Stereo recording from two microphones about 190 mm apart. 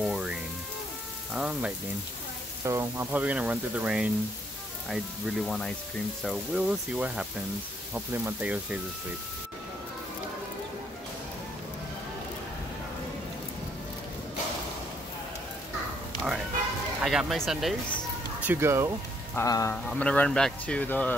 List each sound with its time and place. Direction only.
0.0 s music: 5° right (ahead or behind)
1.3 s speech: 5° right (ahead or behind)
2.6 s speech: 15° right (ahead or behind)
17.0 s speech: centre (ahead or behind)
18.4 s speech: 10° right (ahead or behind)
19.3 s speech: 15° left (ahead or behind)
19.7 s speech: 5° left (ahead or behind)